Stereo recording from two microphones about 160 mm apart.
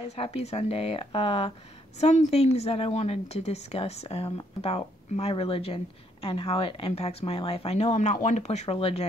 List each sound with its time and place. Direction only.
0.1 s a woman's voice: 40° left (ahead or behind)